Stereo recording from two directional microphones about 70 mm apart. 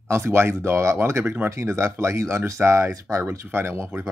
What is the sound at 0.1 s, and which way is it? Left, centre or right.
Speech, right.